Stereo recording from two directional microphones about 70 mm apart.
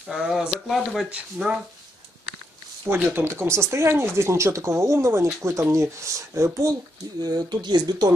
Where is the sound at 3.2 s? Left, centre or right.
Right.